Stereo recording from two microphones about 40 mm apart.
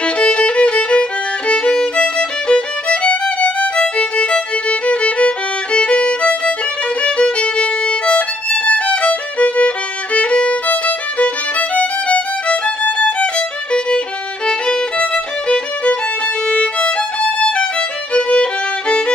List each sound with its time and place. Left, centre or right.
0.0 s violin: left
1.5 s music: left
7.0 s violin: left
11.7 s music: left
14.7 s music: left
16.4 s violin: left